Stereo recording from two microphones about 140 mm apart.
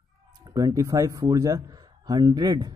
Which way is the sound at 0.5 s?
25° right (ahead or behind).